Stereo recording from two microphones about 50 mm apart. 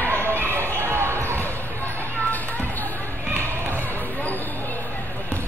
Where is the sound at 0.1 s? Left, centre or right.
Right.